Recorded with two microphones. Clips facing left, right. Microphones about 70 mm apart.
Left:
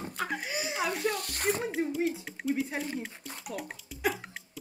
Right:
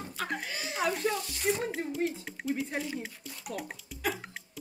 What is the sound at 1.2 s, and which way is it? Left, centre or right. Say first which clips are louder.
Speech: even; left.